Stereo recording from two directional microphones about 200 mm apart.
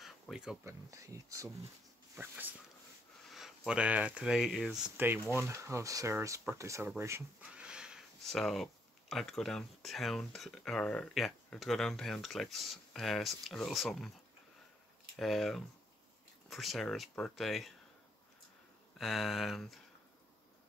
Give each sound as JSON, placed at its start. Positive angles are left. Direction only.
{"t": 0.0, "sound": "a sound", "side_deg": 0}
{"t": 0.7, "sound": "speech", "side_deg": -15}
{"t": 7.0, "sound": "a sound", "side_deg": -10}
{"t": 9.1, "sound": "speech", "side_deg": 0}
{"t": 15.1, "sound": "speech", "side_deg": 0}
{"t": 18.9, "sound": "speech", "side_deg": 0}